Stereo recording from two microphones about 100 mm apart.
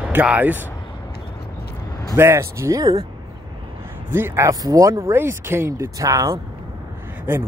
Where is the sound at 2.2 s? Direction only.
25° right (ahead or behind).